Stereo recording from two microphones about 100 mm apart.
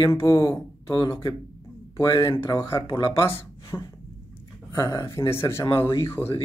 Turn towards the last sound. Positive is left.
turn(degrees=25)  # may be behind; listen again after turning